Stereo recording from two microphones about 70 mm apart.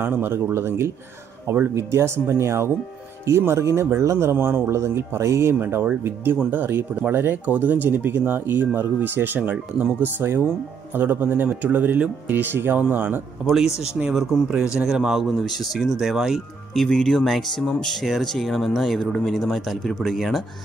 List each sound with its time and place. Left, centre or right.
0.0 s speech: right
14.9 s speech: centre
16.7 s speech: centre